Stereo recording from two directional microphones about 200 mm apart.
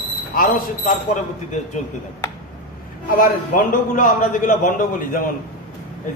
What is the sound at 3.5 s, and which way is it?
A man's voice, 40° left (ahead or behind).